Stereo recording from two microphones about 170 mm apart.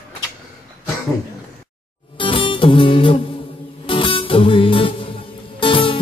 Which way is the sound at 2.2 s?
30° left (ahead or behind).